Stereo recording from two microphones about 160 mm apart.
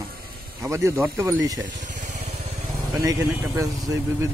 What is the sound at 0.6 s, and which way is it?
Speech, 20° right (ahead or behind).